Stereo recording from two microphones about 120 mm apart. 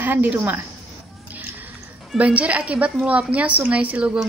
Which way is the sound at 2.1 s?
10° right (ahead or behind).